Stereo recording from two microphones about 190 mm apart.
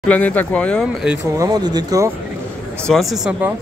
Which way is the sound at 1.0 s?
10° right (ahead or behind).